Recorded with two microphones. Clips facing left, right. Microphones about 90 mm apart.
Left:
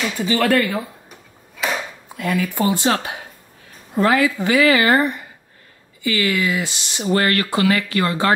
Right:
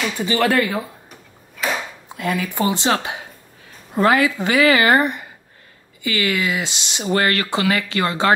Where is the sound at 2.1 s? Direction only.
20° right (ahead or behind).